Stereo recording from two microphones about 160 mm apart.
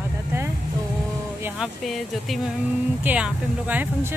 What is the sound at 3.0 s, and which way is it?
Speech, 10° right (ahead or behind).